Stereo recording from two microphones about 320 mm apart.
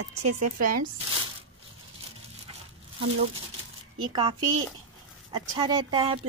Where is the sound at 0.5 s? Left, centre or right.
Right.